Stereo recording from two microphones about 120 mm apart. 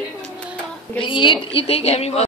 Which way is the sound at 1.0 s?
45° left (ahead or behind).